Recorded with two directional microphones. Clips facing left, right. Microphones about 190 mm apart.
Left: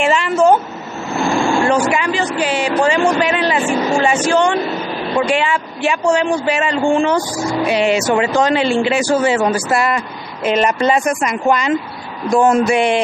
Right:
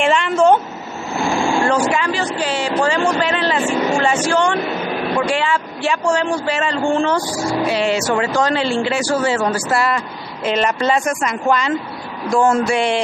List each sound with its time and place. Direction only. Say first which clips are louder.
0.0 s vehicle: left 1 dB; 5° left (ahead or behind)
1.7 s a man's voice: left 2 dB; 15° left (ahead or behind)